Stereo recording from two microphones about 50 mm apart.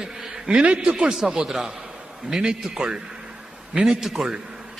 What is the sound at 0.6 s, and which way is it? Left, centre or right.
Speech, right.